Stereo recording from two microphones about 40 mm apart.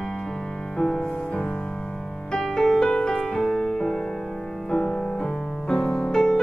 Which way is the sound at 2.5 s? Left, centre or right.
Centre.